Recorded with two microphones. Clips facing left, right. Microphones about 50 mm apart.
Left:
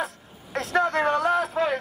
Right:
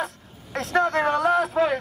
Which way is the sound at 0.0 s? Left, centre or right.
Centre.